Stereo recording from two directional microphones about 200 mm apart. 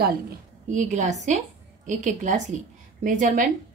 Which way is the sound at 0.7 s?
35° right (ahead or behind).